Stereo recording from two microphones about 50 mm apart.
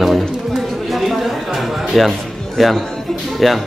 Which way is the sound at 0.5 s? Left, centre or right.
Centre.